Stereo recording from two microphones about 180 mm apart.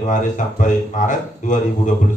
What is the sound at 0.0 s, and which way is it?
Speech, 45° left (ahead or behind).